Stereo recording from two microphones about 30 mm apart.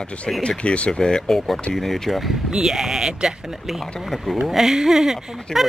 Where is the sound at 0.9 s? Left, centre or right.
Left.